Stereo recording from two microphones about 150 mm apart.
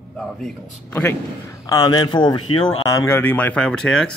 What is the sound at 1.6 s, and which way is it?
Speech, 25° left (ahead or behind).